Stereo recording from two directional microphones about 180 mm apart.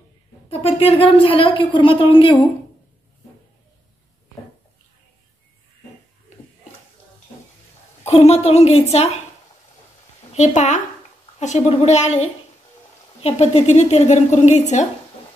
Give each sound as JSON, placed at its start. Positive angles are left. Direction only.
{"t": 0.5, "sound": "a woman's voice", "side_deg": 30}
{"t": 8.0, "sound": "a woman's voice", "side_deg": 35}
{"t": 10.3, "sound": "a woman's voice", "side_deg": 40}